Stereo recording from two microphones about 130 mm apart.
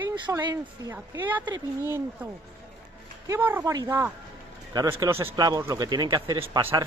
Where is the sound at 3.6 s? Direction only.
25° right (ahead or behind).